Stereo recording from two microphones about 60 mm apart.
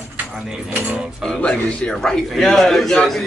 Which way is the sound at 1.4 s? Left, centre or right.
Centre.